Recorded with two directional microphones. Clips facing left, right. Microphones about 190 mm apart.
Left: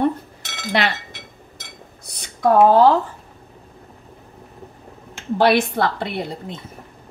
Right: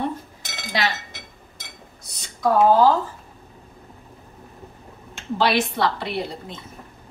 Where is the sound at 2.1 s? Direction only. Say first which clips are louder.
Left 4 dB; 60° left (ahead or behind).